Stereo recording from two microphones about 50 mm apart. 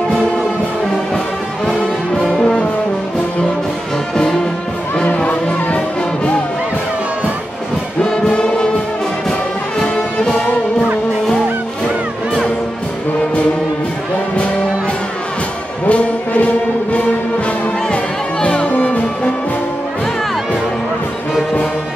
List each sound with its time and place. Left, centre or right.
2.2 s brass instrument: centre
4.1 s music: centre
5.0 s music: left
8.0 s brass instrument: centre
9.8 s music: centre
15.9 s brass instrument: left
17.9 s music: left